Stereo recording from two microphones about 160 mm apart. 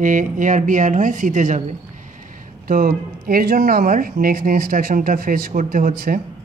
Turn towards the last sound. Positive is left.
turn(degrees=-60)  # may be behind; listen again after turning